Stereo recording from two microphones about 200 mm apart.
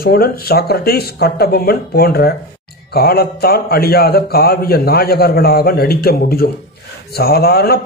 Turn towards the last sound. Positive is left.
turn(degrees=50)  # may be behind; listen again after turning